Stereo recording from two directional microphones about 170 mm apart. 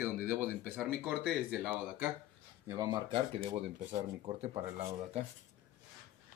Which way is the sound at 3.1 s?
30° right (ahead or behind).